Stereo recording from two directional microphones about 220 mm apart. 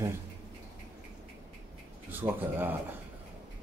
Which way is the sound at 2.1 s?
10° right (ahead or behind).